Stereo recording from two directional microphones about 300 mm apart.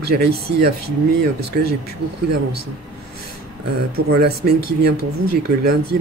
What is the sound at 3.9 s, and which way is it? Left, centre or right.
Speech, right.